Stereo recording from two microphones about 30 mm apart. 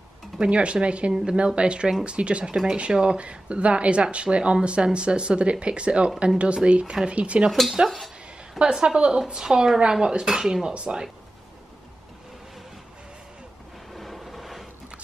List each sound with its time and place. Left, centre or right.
0.4 s speech: right
2.5 s speech: right
8.7 s speech: right
13.9 s vehicle: centre